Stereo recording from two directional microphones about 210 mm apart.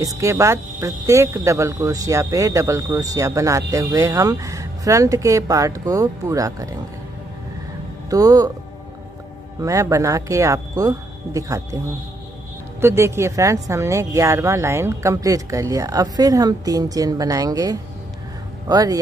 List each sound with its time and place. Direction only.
0.2 s speech: 15° right (ahead or behind)
8.1 s speech: 15° right (ahead or behind)
9.6 s speech: 15° right (ahead or behind)
12.8 s speech: 10° right (ahead or behind)